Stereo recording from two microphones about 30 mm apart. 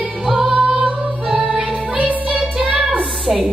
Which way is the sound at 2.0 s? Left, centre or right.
Right.